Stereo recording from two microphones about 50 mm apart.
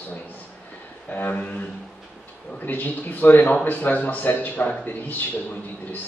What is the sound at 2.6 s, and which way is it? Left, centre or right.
A man's voice, left.